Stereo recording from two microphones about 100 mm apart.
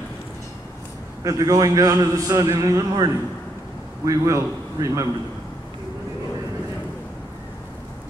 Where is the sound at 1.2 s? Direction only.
35° right (ahead or behind).